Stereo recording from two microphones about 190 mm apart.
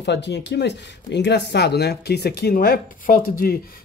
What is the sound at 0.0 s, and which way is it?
Speech, 65° left (ahead or behind).